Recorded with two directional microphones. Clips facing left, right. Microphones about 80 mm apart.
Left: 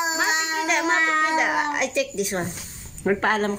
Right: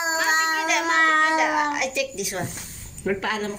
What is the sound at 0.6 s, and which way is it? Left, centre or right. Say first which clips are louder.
Cat: left 1 dB; left.